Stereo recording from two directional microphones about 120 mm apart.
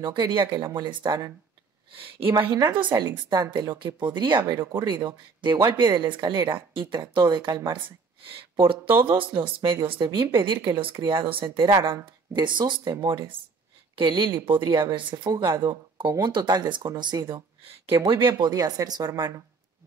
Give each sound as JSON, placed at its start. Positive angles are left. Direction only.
{"t": 0.0, "sound": "speech", "side_deg": -40}
{"t": 2.5, "sound": "speech", "side_deg": -40}
{"t": 4.4, "sound": "speech", "side_deg": -25}
{"t": 5.0, "sound": "speech", "side_deg": -40}
{"t": 9.0, "sound": "speech", "side_deg": -45}
{"t": 18.3, "sound": "speech", "side_deg": -30}